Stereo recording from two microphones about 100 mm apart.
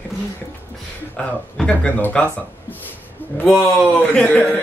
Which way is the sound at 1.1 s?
10° left (ahead or behind).